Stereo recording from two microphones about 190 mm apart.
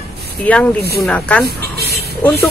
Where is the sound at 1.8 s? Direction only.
60° right (ahead or behind).